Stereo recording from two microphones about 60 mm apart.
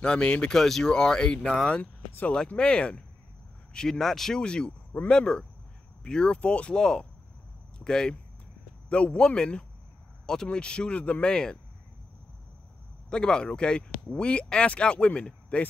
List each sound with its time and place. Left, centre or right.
0.0 s speech: centre
1.8 s speech: left
2.3 s speech: centre
13.1 s speech: centre